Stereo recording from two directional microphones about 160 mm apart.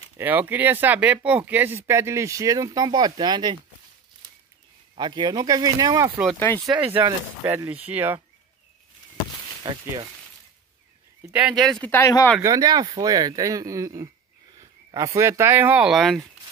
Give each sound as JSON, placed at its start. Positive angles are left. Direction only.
{"t": 0.2, "sound": "speech", "side_deg": -10}
{"t": 4.9, "sound": "speech", "side_deg": -30}
{"t": 7.1, "sound": "speech", "side_deg": -15}
{"t": 9.6, "sound": "speech", "side_deg": -25}
{"t": 11.4, "sound": "speech", "side_deg": 0}
{"t": 11.9, "sound": "speech", "side_deg": 20}
{"t": 12.4, "sound": "speech", "side_deg": -20}